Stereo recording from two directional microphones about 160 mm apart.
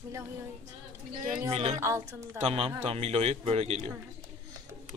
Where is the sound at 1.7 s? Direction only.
15° right (ahead or behind).